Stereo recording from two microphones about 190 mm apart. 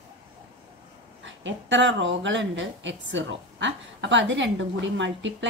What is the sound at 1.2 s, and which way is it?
Speech, 75° right (ahead or behind).